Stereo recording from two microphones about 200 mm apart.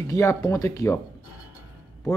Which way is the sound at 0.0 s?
15° left (ahead or behind).